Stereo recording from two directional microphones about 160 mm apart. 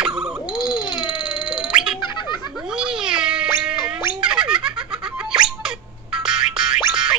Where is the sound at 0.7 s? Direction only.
30° left (ahead or behind).